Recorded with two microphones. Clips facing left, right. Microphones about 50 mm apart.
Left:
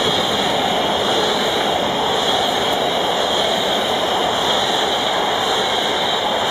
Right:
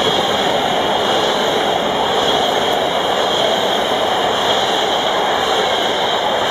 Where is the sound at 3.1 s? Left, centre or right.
Right.